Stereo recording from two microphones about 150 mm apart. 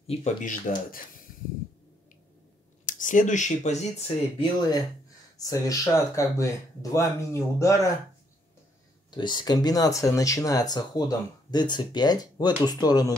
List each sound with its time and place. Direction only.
0.0 s speech: 40° left (ahead or behind)
0.4 s speech: 60° left (ahead or behind)
2.8 s speech: 60° left (ahead or behind)
4.4 s speech: 25° left (ahead or behind)
9.1 s speech: 30° left (ahead or behind)